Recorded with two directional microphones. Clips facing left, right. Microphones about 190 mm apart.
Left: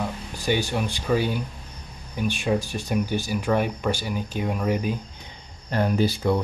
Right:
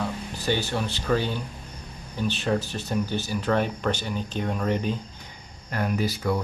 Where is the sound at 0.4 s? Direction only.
15° left (ahead or behind).